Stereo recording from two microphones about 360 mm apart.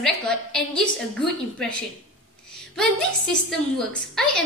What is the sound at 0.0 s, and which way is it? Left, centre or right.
A woman's voice, centre.